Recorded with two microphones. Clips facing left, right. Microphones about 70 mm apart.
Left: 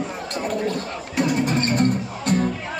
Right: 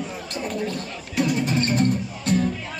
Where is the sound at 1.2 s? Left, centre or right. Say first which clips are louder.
Left 1 dB; left.